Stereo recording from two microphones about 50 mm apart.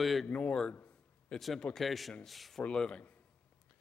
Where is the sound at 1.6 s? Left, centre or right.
Centre.